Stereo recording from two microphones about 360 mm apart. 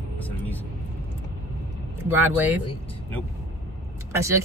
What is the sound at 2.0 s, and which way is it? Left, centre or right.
Speech, centre.